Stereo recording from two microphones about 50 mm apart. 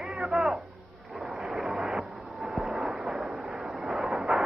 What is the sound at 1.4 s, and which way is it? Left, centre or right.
Vehicle, centre.